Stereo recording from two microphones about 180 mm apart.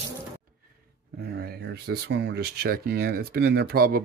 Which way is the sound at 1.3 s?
65° right (ahead or behind).